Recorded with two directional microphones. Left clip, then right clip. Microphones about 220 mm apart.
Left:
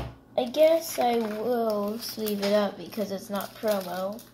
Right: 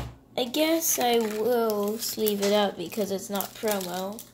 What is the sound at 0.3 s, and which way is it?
Speech, 45° right (ahead or behind).